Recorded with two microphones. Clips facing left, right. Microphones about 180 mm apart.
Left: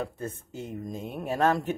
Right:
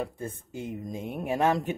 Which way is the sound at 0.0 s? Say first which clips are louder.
Even; 10° right (ahead or behind).